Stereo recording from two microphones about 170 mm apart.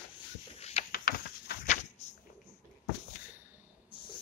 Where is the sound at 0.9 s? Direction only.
60° left (ahead or behind).